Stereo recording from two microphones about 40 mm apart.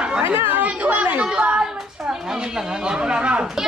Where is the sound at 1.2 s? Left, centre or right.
Right.